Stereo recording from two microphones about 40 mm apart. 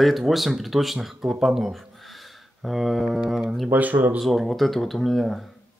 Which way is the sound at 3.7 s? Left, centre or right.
Right.